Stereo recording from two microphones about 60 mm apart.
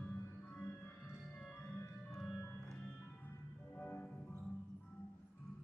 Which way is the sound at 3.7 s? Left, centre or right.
Left.